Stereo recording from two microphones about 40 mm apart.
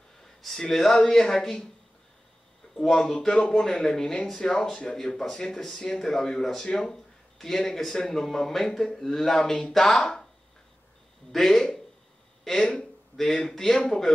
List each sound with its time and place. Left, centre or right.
0.4 s speech: centre
2.7 s speech: centre
11.3 s speech: centre
13.1 s speech: centre